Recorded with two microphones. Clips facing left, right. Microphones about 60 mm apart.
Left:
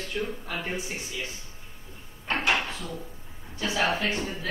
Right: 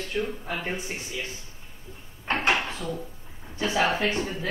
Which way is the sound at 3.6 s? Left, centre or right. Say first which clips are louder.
Right 2 dB; right.